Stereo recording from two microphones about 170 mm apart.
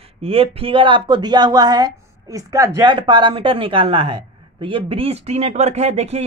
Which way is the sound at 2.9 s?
30° right (ahead or behind).